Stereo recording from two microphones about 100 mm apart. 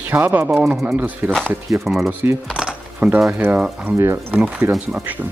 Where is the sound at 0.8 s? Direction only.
15° right (ahead or behind).